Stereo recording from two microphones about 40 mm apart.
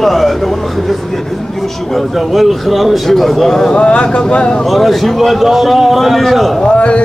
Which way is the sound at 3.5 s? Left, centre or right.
Left.